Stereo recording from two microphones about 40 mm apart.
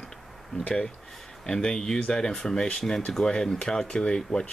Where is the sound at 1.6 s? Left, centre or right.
Centre.